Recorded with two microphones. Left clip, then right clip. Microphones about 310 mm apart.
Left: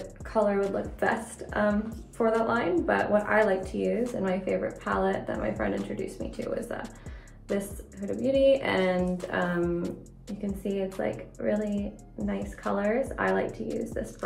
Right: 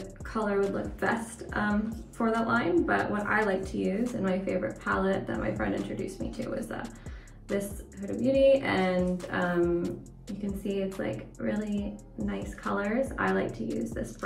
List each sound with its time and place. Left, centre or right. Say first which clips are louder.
0.0 s a woman's voice: left 6 dB; centre